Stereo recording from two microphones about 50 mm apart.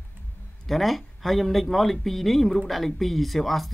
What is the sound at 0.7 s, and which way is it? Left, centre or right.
Speech, centre.